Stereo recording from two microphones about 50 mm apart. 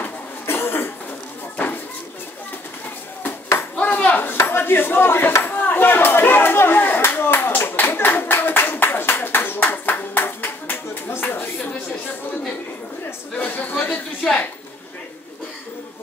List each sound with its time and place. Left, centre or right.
0.5 s cough: left
3.3 s ping: left
3.7 s speech: left
5.4 s speech: left
7.0 s clapping: left
13.4 s a man's voice: left